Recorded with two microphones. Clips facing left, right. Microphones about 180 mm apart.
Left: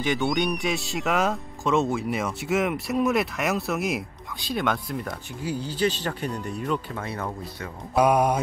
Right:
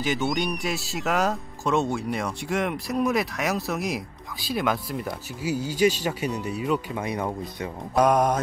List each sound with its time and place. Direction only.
0.0 s speech: centre (ahead or behind)
7.1 s speech: 15° right (ahead or behind)
7.9 s mantra: 10° left (ahead or behind)